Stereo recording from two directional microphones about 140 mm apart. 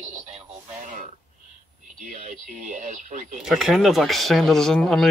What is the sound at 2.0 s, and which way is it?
Speech, 65° right (ahead or behind).